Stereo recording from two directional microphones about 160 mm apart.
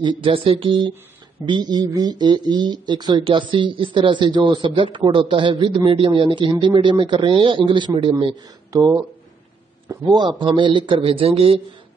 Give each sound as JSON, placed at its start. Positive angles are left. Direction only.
{"t": 0.2, "sound": "a man's voice", "side_deg": -35}
{"t": 8.7, "sound": "a man's voice", "side_deg": -20}